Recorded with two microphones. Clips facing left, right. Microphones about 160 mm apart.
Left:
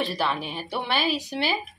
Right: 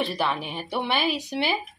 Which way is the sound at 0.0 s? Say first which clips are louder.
Even; 15° right (ahead or behind).